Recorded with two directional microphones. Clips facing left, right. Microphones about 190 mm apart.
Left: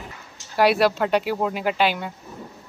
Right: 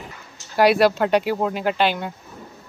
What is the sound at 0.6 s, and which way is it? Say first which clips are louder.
Speech: right 2 dB; centre (ahead or behind).